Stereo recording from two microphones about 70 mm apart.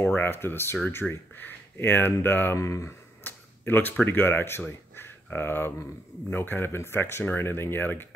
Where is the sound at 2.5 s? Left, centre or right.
Left.